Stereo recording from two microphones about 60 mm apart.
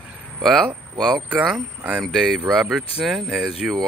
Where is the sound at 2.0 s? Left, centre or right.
Centre.